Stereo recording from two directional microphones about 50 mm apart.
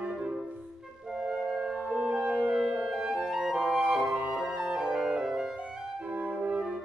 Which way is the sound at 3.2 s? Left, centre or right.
Centre.